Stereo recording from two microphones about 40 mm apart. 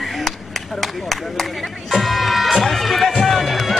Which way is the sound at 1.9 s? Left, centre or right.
Centre.